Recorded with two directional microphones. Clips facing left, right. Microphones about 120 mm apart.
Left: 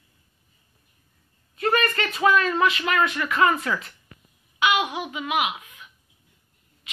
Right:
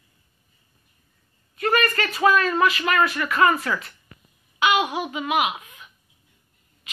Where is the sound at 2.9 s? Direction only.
20° left (ahead or behind).